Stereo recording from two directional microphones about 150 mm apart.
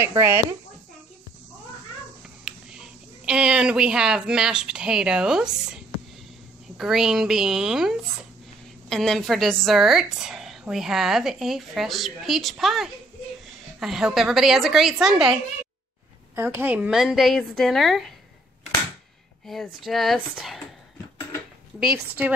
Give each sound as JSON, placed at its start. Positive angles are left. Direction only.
{"t": 0.0, "sound": "speech", "side_deg": -15}
{"t": 2.4, "sound": "a woman's voice", "side_deg": -5}
{"t": 16.3, "sound": "a woman's voice", "side_deg": -15}
{"t": 19.4, "sound": "a woman's voice", "side_deg": 0}